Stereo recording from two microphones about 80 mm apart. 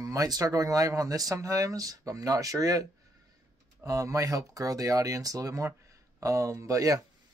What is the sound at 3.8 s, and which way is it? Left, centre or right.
Speech, right.